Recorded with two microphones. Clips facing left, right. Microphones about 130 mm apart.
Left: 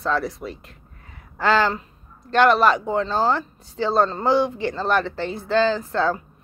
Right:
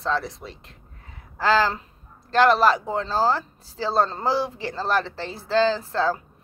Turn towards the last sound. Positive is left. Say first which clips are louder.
# left 1 dB
turn(degrees=-30)  # may be behind; listen again after turning